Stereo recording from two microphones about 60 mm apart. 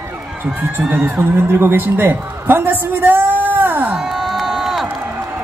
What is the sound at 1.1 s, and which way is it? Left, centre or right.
A woman's voice, right.